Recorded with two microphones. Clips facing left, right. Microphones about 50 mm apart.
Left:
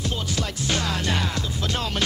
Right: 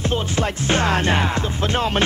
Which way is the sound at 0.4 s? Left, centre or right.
Right.